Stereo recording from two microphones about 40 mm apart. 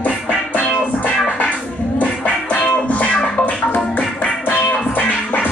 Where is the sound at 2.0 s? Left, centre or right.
Left.